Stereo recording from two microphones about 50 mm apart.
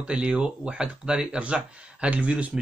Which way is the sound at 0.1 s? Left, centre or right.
Centre.